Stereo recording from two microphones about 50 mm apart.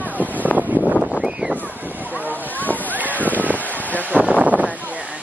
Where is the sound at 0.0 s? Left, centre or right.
Left.